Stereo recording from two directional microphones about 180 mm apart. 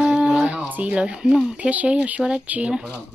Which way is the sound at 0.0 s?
5° right (ahead or behind).